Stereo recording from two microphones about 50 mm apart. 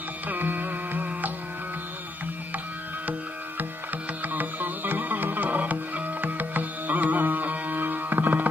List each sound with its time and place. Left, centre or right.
0.3 s music: right
4.3 s music: right